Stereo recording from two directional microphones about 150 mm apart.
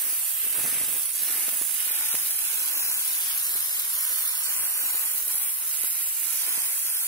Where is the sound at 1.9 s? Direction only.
15° left (ahead or behind).